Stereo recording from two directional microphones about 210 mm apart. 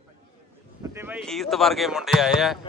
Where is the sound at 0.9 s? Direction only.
10° right (ahead or behind).